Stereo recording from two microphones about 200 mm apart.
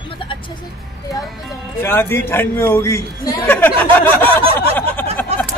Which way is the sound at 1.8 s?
10° left (ahead or behind).